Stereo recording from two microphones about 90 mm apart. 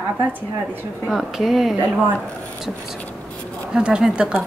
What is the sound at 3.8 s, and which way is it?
Speech, 10° right (ahead or behind).